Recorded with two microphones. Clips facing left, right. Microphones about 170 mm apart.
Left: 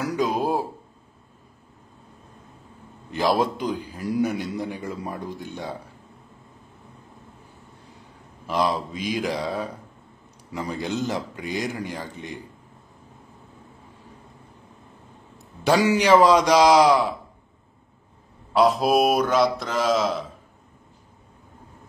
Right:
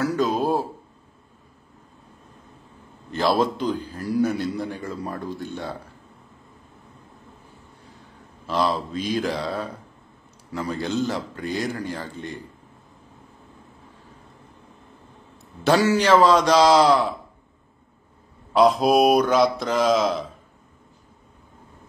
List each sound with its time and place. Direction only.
0.0 s a sound: 15° left (ahead or behind)
3.1 s a man's voice: 15° left (ahead or behind)
8.5 s a man's voice: 15° left (ahead or behind)
15.6 s a man's voice: 15° left (ahead or behind)
18.5 s speech: 5° left (ahead or behind)